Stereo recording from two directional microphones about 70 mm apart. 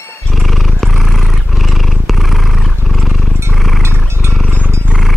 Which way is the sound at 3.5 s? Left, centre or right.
Centre.